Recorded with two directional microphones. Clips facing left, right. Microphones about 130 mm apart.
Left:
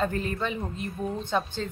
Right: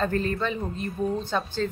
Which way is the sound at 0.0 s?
15° left (ahead or behind).